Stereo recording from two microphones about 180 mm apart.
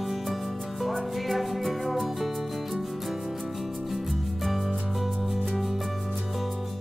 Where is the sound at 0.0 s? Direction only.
Centre (ahead or behind).